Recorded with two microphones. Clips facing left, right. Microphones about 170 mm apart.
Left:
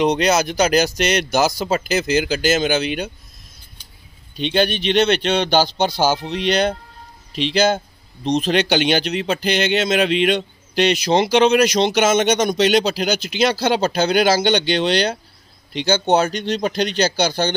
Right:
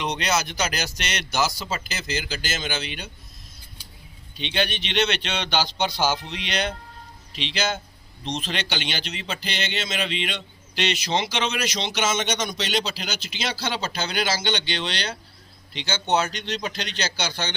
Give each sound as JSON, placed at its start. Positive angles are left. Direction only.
{"t": 0.0, "sound": "speech", "side_deg": 40}
{"t": 4.4, "sound": "speech", "side_deg": 40}